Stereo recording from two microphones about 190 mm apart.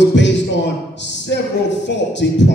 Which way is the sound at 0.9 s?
70° left (ahead or behind).